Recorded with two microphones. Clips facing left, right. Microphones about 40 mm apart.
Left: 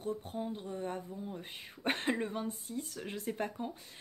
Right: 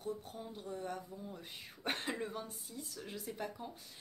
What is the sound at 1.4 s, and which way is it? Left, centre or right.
Speech, left.